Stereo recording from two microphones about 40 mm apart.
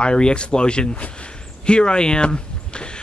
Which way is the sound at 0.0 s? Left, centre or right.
Left.